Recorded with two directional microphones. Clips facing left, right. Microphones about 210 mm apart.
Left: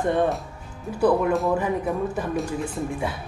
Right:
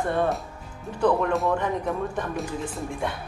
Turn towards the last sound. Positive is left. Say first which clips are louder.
# left 2 dB
turn(degrees=0)  # may be behind; listen again after turning